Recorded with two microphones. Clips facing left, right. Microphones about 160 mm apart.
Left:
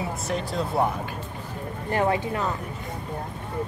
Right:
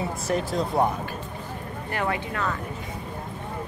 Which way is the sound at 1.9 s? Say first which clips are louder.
Left 5 dB; 25° left (ahead or behind).